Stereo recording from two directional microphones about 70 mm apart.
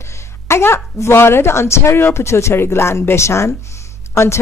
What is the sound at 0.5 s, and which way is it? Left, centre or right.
Speech, left.